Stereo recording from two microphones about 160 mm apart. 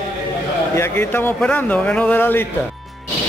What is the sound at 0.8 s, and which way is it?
Speech, 15° left (ahead or behind).